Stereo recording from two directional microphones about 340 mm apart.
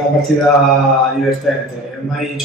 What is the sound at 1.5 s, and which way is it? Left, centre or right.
Speech, centre.